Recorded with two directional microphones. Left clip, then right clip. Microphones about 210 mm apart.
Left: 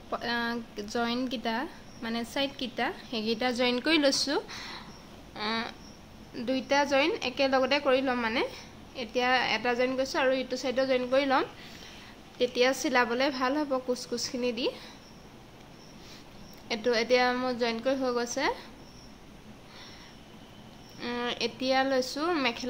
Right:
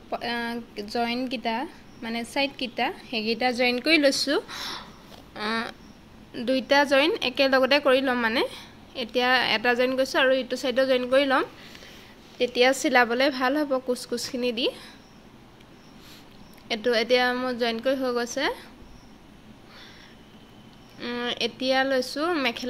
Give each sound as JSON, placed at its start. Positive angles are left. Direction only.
{"t": 0.1, "sound": "a woman's voice", "side_deg": -5}
{"t": 4.5, "sound": "speech", "side_deg": -30}
{"t": 5.3, "sound": "a sound", "side_deg": -15}
{"t": 6.3, "sound": "a woman's voice", "side_deg": -25}
{"t": 16.6, "sound": "a woman's voice", "side_deg": -15}
{"t": 21.0, "sound": "a woman's voice", "side_deg": -10}